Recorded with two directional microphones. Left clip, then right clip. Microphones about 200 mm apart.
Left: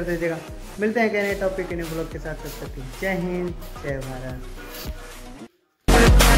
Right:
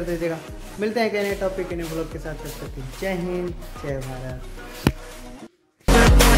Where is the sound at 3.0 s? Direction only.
15° right (ahead or behind).